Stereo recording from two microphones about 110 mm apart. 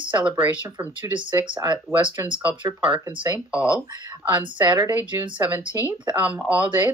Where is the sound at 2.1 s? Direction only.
15° right (ahead or behind).